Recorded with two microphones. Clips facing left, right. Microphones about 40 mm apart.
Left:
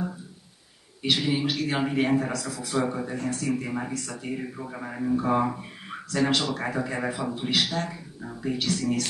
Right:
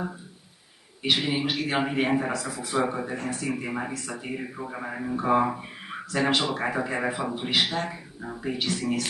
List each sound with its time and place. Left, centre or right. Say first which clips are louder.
1.0 s a man's voice: even; centre